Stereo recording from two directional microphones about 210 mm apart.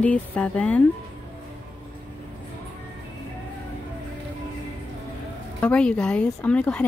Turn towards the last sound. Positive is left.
turn(degrees=5)  # may be behind; listen again after turning